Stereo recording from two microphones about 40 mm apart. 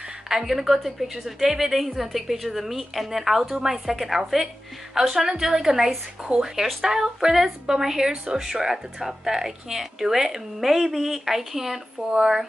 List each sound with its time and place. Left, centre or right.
0.3 s a woman's voice: centre
5.2 s speech: centre